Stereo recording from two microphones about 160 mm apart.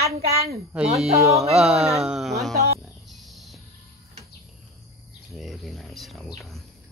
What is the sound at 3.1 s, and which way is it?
Wild animals, centre (ahead or behind).